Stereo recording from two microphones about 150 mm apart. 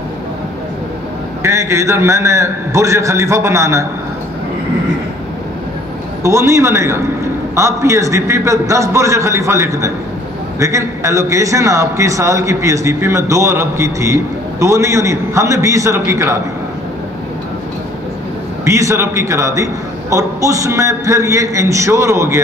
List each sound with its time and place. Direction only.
1.4 s a man's voice: 20° right (ahead or behind)
6.2 s a man's voice: 20° right (ahead or behind)
18.6 s a man's voice: 20° right (ahead or behind)